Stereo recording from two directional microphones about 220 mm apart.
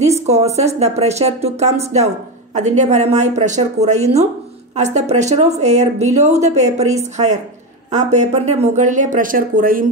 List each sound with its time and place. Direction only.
0.3 s speech: 30° right (ahead or behind)